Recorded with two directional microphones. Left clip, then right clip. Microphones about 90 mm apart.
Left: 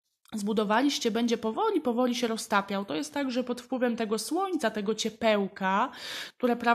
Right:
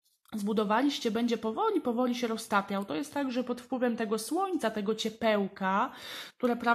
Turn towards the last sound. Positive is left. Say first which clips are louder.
# left 2 dB
turn(degrees=30)  # may be behind; listen again after turning